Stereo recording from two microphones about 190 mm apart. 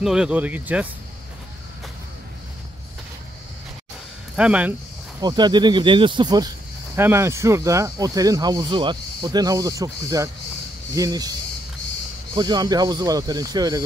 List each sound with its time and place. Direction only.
0.0 s speech: 5° right (ahead or behind)
4.4 s speech: 5° right (ahead or behind)
5.2 s speech: 25° right (ahead or behind)
12.4 s speech: 20° right (ahead or behind)